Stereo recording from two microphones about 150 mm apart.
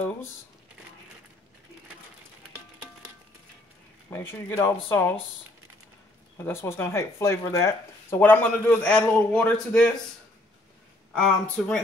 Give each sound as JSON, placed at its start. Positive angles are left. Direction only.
{"t": 4.1, "sound": "speech", "side_deg": 15}
{"t": 6.3, "sound": "speech", "side_deg": 15}
{"t": 11.1, "sound": "speech", "side_deg": 5}